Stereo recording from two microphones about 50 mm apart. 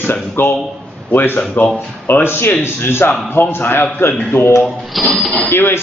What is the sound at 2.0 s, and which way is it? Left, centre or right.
A man's voice, left.